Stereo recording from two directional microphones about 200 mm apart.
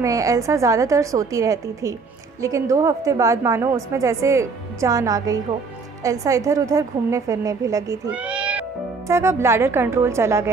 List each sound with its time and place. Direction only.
0.0 s a woman's voice: 15° right (ahead or behind)